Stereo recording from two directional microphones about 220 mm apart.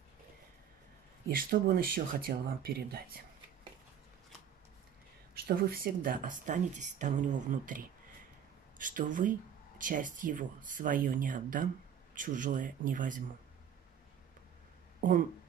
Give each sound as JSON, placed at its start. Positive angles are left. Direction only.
{"t": 1.3, "sound": "speech", "side_deg": -40}
{"t": 5.3, "sound": "speech", "side_deg": -45}